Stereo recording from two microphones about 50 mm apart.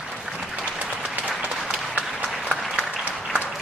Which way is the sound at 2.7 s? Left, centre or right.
Centre.